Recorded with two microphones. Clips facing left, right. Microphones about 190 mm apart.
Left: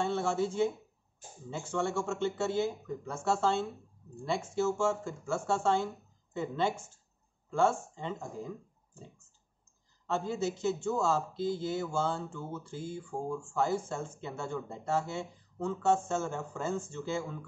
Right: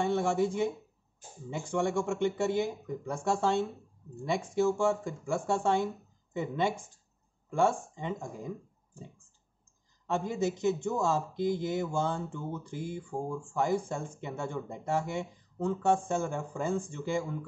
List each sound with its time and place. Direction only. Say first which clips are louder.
0.0 s speech: right 3 dB; 15° right (ahead or behind)
10.0 s speech: right 2 dB; 15° right (ahead or behind)